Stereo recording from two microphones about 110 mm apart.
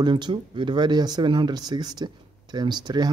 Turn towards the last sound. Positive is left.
turn(degrees=-40)  # may be behind; listen again after turning